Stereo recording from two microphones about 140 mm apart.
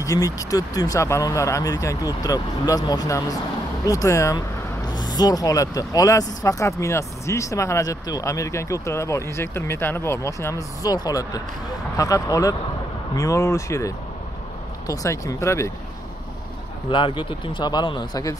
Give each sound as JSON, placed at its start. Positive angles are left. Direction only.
{"t": 0.0, "sound": "speech", "side_deg": 25}
{"t": 16.9, "sound": "speech", "side_deg": 35}